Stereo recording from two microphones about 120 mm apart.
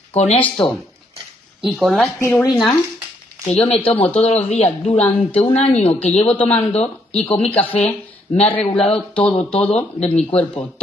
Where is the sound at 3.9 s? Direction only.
60° left (ahead or behind).